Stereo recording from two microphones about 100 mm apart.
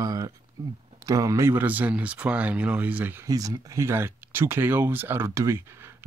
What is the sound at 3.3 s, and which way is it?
Speech, 35° right (ahead or behind).